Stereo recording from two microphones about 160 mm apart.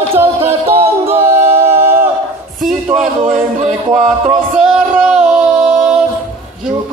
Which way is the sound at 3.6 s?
50° right (ahead or behind).